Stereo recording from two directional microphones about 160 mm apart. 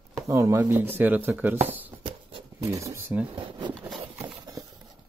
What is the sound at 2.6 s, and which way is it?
Speech, 20° right (ahead or behind).